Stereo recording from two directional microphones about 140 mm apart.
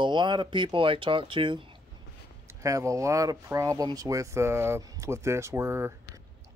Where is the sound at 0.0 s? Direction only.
35° right (ahead or behind).